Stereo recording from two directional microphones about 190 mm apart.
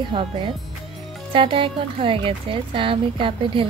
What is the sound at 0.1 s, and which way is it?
Speech, 25° right (ahead or behind).